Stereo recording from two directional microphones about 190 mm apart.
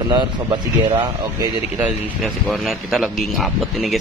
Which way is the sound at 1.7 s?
5° right (ahead or behind).